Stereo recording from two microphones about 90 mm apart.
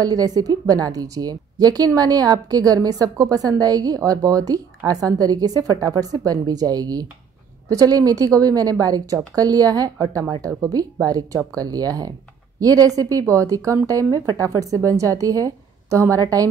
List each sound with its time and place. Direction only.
0.0 s a woman's voice: 45° right (ahead or behind)